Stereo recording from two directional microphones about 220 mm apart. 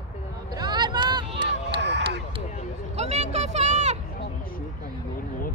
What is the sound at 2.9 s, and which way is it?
Vehicle, 30° right (ahead or behind).